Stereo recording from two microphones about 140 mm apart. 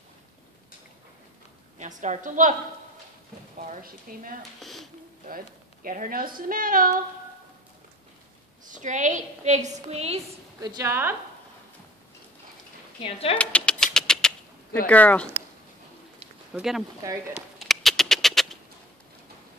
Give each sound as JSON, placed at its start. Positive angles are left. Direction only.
{"t": 1.8, "sound": "a woman's voice", "side_deg": -60}
{"t": 3.5, "sound": "speech", "side_deg": -80}
{"t": 4.4, "sound": "speech", "side_deg": 0}
{"t": 5.9, "sound": "a woman's voice", "side_deg": -85}
{"t": 8.6, "sound": "a woman's voice", "side_deg": -65}
{"t": 10.6, "sound": "a woman's voice", "side_deg": -25}
{"t": 13.0, "sound": "speech", "side_deg": 40}
{"t": 13.4, "sound": "a sound", "side_deg": 10}
{"t": 13.9, "sound": "typewriter", "side_deg": 5}
{"t": 14.9, "sound": "speech", "side_deg": 10}
{"t": 16.5, "sound": "speech", "side_deg": 0}
{"t": 17.6, "sound": "bird", "side_deg": 0}